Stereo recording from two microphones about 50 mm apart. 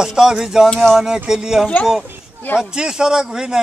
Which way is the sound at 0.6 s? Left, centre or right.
Centre.